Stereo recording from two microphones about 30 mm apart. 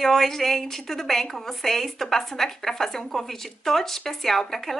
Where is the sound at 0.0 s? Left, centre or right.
Centre.